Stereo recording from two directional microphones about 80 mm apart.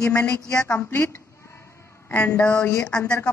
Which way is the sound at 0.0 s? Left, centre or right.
Left.